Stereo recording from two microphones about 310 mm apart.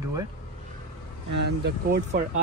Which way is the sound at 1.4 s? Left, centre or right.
Right.